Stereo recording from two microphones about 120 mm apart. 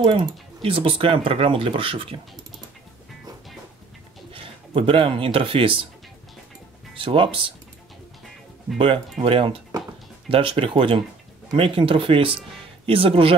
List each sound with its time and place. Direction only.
0.0 s speech: 35° right (ahead or behind)
4.3 s speech: 45° right (ahead or behind)
7.0 s speech: 45° right (ahead or behind)
8.7 s speech: 45° right (ahead or behind)